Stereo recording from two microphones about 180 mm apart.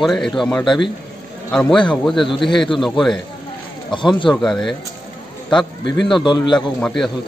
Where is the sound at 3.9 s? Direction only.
25° left (ahead or behind).